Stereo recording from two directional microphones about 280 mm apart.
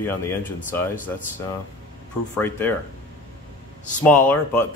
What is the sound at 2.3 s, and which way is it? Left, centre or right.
Speech, centre.